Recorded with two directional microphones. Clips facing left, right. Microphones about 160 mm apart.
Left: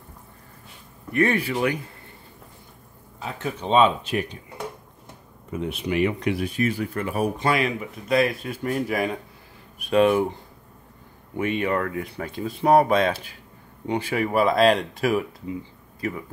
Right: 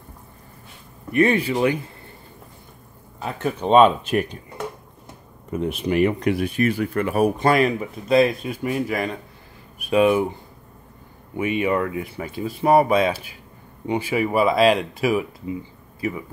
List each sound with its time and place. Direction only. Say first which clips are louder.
1.1 s speech: right 3 dB; 20° right (ahead or behind)
3.2 s speech: right 5 dB; 55° right (ahead or behind)
5.5 s speech: right 4 dB; 45° right (ahead or behind); by 7.3 s 70° right (ahead or behind)
7.3 s speech: right 5 dB; 45° right (ahead or behind)
8.1 s speech: right 4 dB; 25° right (ahead or behind); by 10.3 s 5° right (ahead or behind)
11.3 s speech: right 2 dB; 10° right (ahead or behind)